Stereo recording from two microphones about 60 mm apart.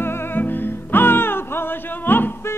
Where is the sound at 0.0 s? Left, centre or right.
Left.